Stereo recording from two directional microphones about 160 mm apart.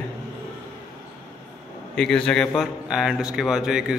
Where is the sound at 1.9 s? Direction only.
5° left (ahead or behind).